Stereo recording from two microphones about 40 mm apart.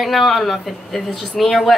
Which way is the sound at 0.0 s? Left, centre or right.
Centre.